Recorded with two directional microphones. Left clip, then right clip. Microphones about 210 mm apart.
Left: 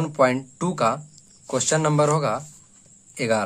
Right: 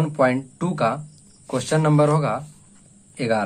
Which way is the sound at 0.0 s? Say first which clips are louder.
Even; 25° left (ahead or behind).